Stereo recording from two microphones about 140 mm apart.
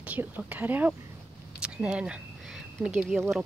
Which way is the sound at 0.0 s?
10° right (ahead or behind).